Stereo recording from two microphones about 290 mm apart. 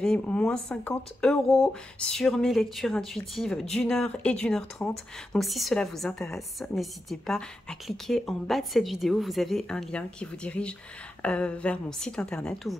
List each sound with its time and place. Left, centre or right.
0.0 s speech: centre